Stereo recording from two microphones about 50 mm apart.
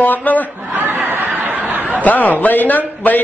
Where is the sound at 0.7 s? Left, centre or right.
Right.